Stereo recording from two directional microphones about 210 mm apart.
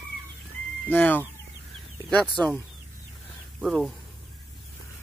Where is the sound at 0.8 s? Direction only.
10° left (ahead or behind).